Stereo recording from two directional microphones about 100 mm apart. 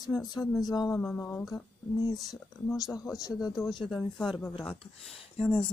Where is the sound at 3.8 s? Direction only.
5° right (ahead or behind).